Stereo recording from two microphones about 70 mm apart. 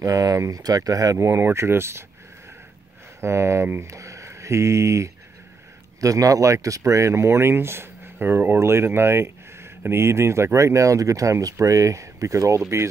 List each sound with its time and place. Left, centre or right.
0.0 s speech: right
3.2 s speech: right
3.8 s speech: right